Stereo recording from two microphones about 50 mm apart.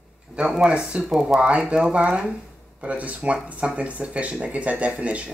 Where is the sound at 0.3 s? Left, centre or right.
Centre.